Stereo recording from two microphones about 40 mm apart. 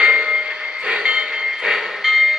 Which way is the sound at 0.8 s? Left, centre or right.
Right.